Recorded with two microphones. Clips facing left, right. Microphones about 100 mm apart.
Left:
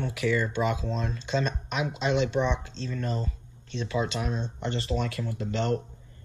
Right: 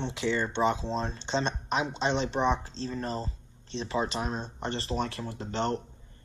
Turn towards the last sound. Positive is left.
turn(degrees=-25)  # may be behind; listen again after turning